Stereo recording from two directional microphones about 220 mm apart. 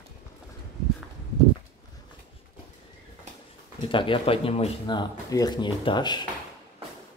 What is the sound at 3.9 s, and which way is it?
Speech, 25° left (ahead or behind).